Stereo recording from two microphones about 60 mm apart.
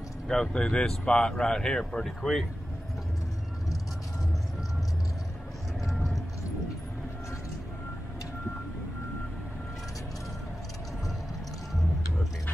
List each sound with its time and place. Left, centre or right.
0.3 s speech: centre
5.9 s vehicle: centre